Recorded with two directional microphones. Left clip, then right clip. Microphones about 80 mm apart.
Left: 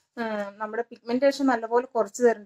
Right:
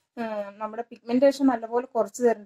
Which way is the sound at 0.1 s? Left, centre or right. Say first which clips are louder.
Left 1 dB; centre.